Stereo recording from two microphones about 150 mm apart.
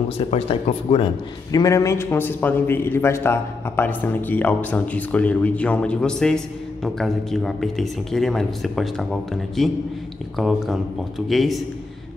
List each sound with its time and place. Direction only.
0.3 s speech: 45° left (ahead or behind)
1.5 s a man's voice: 25° left (ahead or behind); by 11.6 s centre (ahead or behind)